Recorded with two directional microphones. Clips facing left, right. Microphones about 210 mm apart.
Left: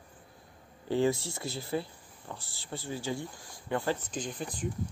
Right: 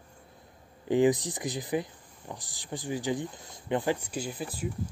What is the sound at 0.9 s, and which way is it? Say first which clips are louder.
Speech: right 4 dB; 15° right (ahead or behind).